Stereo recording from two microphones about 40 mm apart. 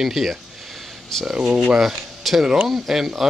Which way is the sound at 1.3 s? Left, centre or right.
Centre.